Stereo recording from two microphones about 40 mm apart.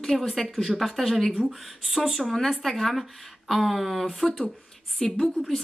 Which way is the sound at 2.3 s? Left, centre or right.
Centre.